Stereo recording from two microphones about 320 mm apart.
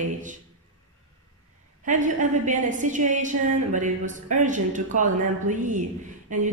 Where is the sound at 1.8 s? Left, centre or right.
Right.